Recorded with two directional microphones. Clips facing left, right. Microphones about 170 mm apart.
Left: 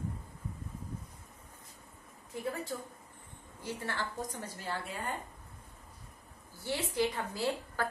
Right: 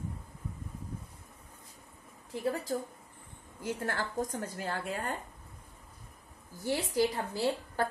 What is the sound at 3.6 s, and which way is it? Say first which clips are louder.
A woman's voice: right 4 dB; 50° right (ahead or behind).